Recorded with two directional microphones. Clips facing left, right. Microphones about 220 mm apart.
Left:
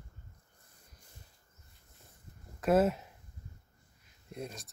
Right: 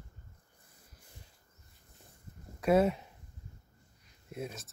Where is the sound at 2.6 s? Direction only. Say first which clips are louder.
Even; centre (ahead or behind).